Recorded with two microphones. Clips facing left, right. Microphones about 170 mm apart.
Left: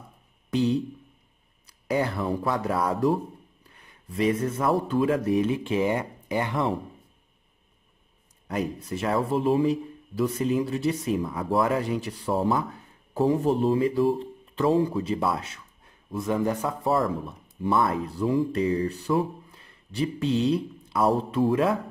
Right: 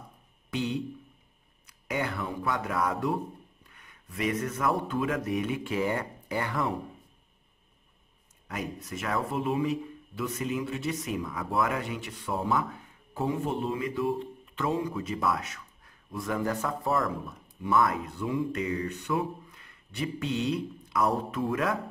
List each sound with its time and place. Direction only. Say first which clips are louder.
0.5 s speech: left 7 dB; 35° left (ahead or behind)
8.5 s speech: left 7 dB; 30° left (ahead or behind)